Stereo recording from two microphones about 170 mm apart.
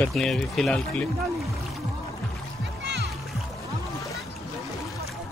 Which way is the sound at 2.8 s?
80° right.